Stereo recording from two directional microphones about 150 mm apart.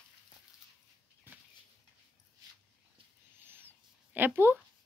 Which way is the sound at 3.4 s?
15° right (ahead or behind).